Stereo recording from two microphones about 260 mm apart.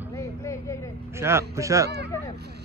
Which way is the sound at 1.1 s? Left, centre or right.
Centre.